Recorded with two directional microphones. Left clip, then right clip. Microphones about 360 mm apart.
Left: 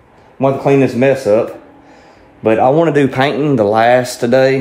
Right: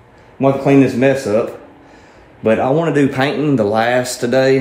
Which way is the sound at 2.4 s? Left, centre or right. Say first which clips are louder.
Left 4 dB; left.